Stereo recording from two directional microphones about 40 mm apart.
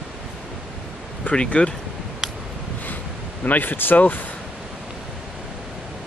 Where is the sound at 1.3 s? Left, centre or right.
Left.